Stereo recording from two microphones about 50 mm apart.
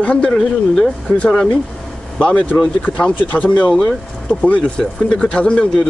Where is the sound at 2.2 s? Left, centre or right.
Left.